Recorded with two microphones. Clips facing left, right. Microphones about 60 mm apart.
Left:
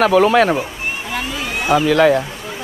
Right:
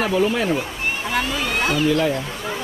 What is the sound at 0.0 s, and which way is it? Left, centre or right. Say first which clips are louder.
Speech: left 8 dB; left.